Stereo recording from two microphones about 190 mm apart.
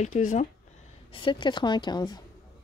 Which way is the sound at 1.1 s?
25° left (ahead or behind).